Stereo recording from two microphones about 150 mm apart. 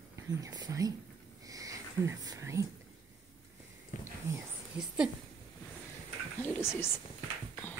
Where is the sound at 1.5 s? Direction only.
25° right (ahead or behind).